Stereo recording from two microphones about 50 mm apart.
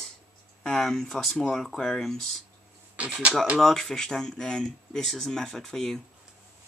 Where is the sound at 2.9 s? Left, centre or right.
Right.